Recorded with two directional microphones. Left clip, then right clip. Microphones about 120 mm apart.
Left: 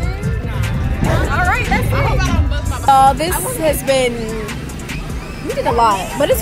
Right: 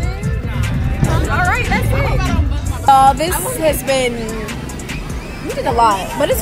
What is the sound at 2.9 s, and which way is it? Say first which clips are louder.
Music: right 1 dB; 25° right (ahead or behind).